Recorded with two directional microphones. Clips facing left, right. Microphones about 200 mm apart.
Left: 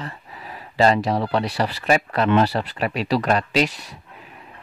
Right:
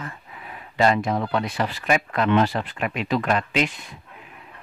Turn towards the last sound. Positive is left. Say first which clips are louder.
# left 3 dB
turn(degrees=40)  # may be behind; listen again after turning